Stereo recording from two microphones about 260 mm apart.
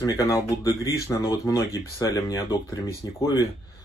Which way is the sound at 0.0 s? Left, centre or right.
Centre.